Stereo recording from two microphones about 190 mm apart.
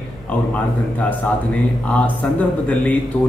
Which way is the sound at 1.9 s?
5° left (ahead or behind).